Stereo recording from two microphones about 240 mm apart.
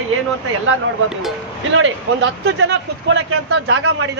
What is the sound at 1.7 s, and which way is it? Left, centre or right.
Speech, right.